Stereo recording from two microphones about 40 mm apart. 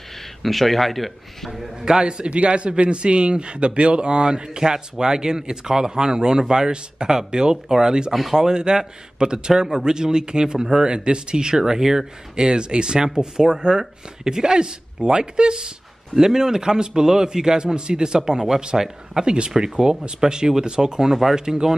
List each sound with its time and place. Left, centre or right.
0.4 s a man's voice: centre
1.5 s a man's voice: centre
8.1 s a man's voice: centre
8.4 s a man's voice: centre
19.5 s a man's voice: centre